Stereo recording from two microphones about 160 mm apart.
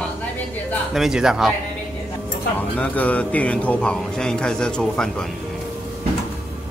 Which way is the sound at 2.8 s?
10° left (ahead or behind).